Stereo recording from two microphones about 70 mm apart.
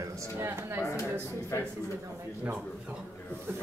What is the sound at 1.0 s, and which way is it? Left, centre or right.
Speech, left.